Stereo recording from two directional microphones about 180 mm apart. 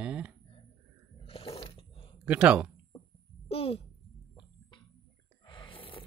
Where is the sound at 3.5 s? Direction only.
30° left (ahead or behind).